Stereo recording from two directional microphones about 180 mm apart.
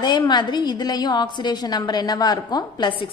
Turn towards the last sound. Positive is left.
turn(degrees=25)  # may be behind; listen again after turning